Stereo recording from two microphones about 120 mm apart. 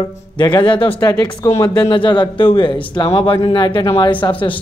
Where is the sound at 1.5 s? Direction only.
30° left (ahead or behind).